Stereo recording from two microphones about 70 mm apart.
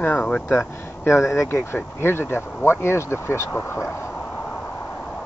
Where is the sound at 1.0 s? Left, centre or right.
Left.